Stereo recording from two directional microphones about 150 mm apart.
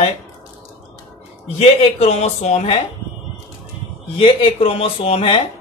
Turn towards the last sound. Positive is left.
turn(degrees=40)  # may be behind; listen again after turning